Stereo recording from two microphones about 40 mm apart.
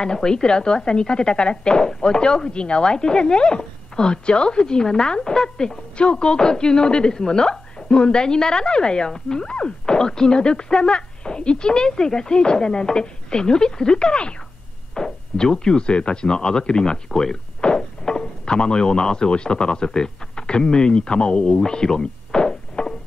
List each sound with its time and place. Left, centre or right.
0.0 s a woman's voice: centre